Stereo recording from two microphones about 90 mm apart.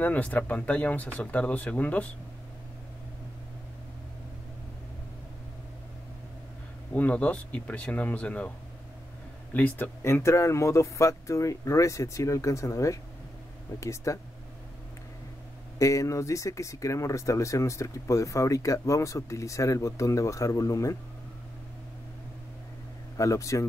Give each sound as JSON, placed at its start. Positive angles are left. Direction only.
{"t": 0.0, "sound": "speech", "side_deg": 20}
{"t": 6.9, "sound": "speech", "side_deg": 15}
{"t": 9.5, "sound": "speech", "side_deg": 20}
{"t": 15.8, "sound": "speech", "side_deg": 35}
{"t": 23.1, "sound": "speech", "side_deg": 35}